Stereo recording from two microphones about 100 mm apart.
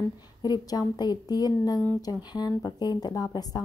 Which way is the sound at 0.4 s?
40° left (ahead or behind).